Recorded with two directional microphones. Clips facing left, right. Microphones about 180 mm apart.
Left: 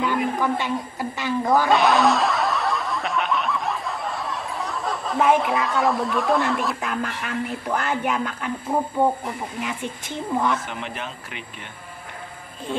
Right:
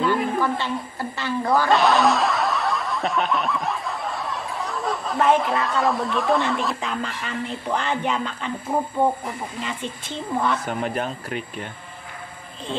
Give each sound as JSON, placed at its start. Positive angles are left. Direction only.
{"t": 0.0, "sound": "a woman's voice", "side_deg": 15}
{"t": 1.7, "sound": "snicker", "side_deg": 0}
{"t": 9.0, "sound": "speech", "side_deg": 10}
{"t": 10.7, "sound": "a man's voice", "side_deg": -40}